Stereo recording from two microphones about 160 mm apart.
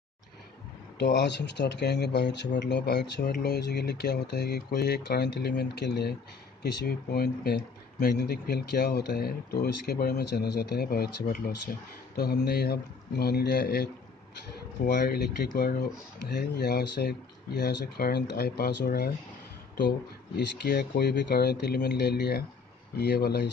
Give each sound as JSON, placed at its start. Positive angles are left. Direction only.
{"t": 0.9, "sound": "speech", "side_deg": 90}
{"t": 6.6, "sound": "speech", "side_deg": 80}
{"t": 12.2, "sound": "speech", "side_deg": 90}
{"t": 15.0, "sound": "speech", "side_deg": 80}
{"t": 20.3, "sound": "speech", "side_deg": 90}